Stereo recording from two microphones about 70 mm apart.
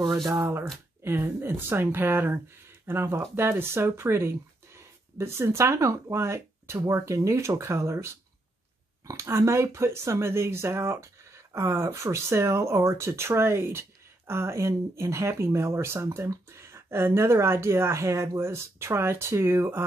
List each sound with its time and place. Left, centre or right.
0.3 s speech: right